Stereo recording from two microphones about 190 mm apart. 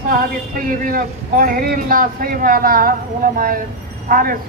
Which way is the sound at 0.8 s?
45° right (ahead or behind).